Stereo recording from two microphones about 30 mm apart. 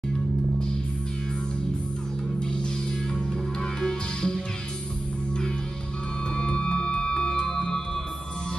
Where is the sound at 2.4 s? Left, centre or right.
Left.